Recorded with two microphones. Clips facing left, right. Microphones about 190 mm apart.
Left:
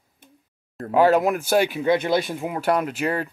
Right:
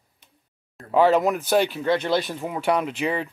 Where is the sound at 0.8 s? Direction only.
5° left (ahead or behind).